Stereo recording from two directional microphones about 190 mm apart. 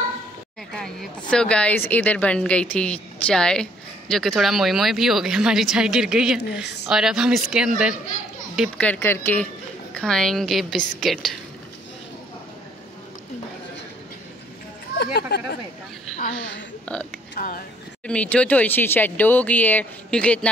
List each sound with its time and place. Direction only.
0.7 s a sound: 5° left (ahead or behind)
1.3 s speech: 5° left (ahead or behind)
8.5 s speech: 5° left (ahead or behind)
15.1 s speech: 60° left (ahead or behind)
16.8 s speech: 5° left (ahead or behind)
17.4 s speech: 50° left (ahead or behind)
18.0 s speech: 5° left (ahead or behind)